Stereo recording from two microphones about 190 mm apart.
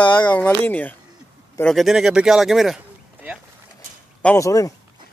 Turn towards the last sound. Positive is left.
turn(degrees=15)  # may be behind; listen again after turning